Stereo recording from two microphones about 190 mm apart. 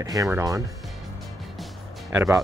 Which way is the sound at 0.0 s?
20° right (ahead or behind).